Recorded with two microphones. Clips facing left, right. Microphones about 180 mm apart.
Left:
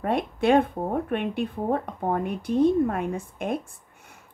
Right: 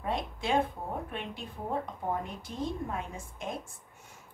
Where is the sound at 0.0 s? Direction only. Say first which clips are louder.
Left 10 dB; 60° left (ahead or behind).